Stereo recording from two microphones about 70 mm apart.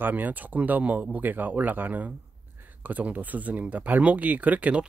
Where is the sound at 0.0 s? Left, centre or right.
Right.